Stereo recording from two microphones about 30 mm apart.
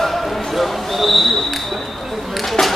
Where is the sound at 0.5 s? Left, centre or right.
Centre.